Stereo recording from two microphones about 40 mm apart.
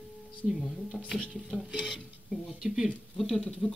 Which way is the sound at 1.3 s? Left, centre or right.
Centre.